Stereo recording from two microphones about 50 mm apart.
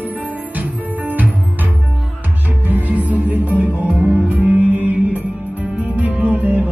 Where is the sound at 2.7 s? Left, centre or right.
Right.